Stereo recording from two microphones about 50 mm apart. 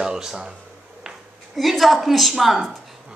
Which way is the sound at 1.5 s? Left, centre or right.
Centre.